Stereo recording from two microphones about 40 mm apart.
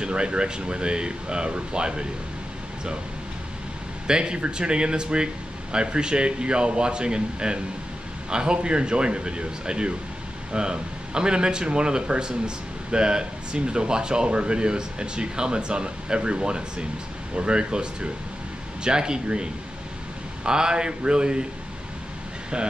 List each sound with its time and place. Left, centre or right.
0.0 s speech: right
4.1 s speech: right
22.5 s speech: right